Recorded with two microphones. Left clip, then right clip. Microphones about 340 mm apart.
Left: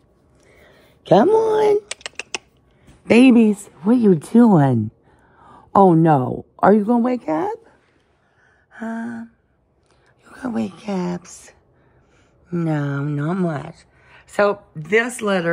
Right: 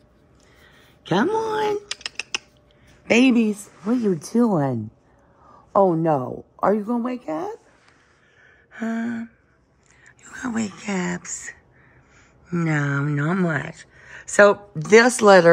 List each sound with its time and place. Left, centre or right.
0.5 s a sound: centre
2.0 s typing: centre
3.1 s speech: centre
5.5 s a sound: left
6.2 s a woman's voice: left
10.2 s speech: centre
14.8 s speech: centre